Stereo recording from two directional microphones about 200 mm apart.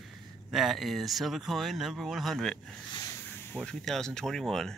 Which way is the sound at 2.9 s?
20° left (ahead or behind).